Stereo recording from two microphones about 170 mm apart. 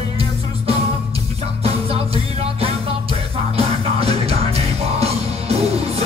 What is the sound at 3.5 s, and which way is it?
Music, 35° right (ahead or behind).